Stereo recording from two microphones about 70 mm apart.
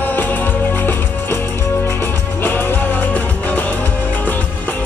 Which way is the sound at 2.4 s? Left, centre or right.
Left.